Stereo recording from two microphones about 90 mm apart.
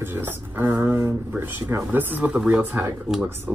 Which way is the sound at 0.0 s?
25° right (ahead or behind).